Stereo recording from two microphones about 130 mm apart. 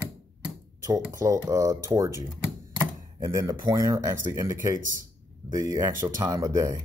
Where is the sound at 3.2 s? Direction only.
25° right (ahead or behind).